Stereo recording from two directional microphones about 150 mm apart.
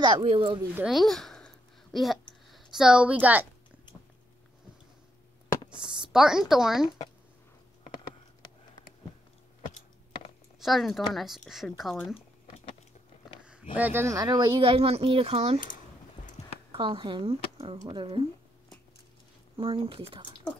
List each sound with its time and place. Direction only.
0.0 s speech: 35° right (ahead or behind)
0.8 s a sound: centre (ahead or behind)
5.9 s a woman's voice: 5° right (ahead or behind)
10.6 s speech: centre (ahead or behind)
13.4 s a sound: 5° right (ahead or behind)
13.7 s speech: 15° right (ahead or behind)
14.6 s speech: 40° right (ahead or behind)
16.7 s speech: 35° right (ahead or behind)
19.5 s speech: 40° right (ahead or behind)